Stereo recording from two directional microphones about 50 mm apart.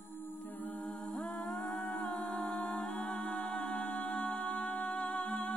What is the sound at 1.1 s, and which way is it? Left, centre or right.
Music, left.